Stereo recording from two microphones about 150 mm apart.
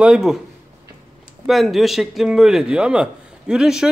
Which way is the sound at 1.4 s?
Centre (ahead or behind).